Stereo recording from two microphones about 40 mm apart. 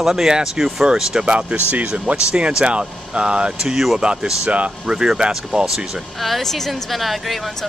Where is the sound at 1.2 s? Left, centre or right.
Right.